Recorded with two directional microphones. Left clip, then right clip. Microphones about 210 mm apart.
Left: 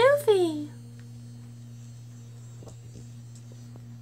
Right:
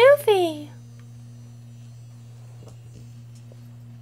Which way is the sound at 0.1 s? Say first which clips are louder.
Right 5 dB; 20° right (ahead or behind).